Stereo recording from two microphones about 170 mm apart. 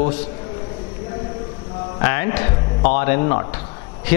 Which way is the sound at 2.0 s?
20° left (ahead or behind).